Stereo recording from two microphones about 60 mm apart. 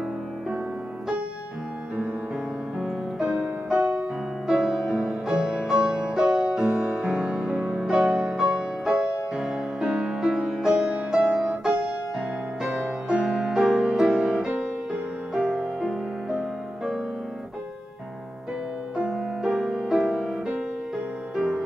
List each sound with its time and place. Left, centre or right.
2.8 s music: centre
9.8 s music: centre
10.2 s music: centre
18.9 s music: centre